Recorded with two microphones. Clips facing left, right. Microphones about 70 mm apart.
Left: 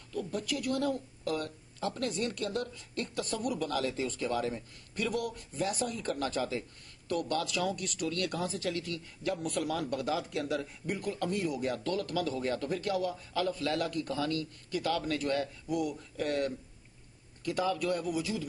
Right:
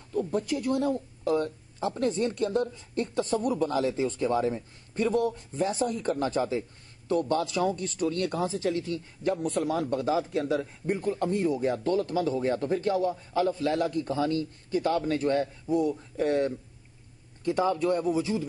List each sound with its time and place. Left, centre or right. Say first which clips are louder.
0.1 s speech: right 7 dB; right